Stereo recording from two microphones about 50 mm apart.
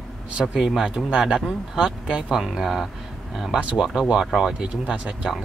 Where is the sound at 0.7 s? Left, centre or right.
Centre.